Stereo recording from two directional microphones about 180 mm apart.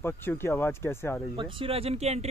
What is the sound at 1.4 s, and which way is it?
Speech, 30° right (ahead or behind).